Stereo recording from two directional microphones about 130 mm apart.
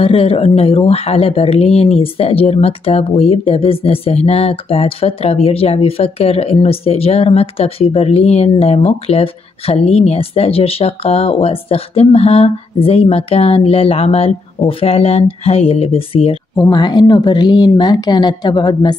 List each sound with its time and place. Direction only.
0.0 s speech: 45° left (ahead or behind)
16.7 s a woman's voice: 35° left (ahead or behind)